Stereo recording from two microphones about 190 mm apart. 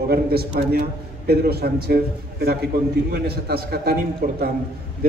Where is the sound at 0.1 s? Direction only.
55° right (ahead or behind).